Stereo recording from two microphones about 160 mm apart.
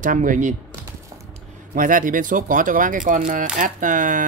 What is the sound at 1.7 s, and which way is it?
Speech, 60° right (ahead or behind).